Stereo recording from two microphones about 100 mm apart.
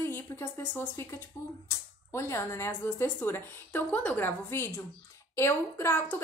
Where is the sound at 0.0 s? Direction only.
25° left (ahead or behind).